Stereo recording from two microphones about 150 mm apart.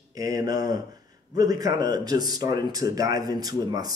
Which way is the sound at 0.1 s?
25° right (ahead or behind).